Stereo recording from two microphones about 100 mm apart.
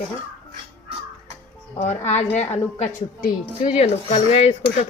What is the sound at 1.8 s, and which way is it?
Speech, 90° left.